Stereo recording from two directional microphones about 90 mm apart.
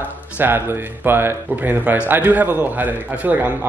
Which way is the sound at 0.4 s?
20° right (ahead or behind).